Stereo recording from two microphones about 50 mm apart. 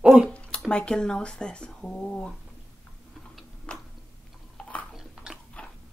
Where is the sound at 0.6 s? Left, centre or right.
Centre.